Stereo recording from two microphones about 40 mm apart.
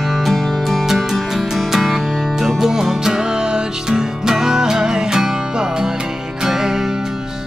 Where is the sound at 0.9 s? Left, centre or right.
Centre.